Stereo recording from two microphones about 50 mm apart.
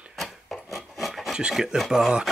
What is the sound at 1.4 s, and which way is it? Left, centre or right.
Speech, centre.